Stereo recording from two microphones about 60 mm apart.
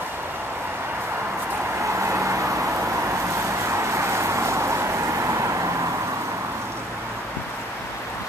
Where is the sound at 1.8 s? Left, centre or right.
Right.